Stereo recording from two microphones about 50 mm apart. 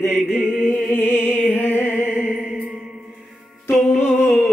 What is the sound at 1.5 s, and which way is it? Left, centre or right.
Music, left.